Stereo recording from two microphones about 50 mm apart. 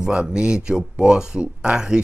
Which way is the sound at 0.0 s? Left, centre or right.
Centre.